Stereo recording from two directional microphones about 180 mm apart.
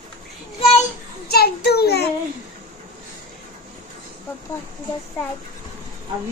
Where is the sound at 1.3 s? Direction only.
60° left (ahead or behind).